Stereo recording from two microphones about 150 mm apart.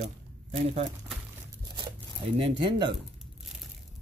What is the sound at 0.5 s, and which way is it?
Speech, 40° right (ahead or behind).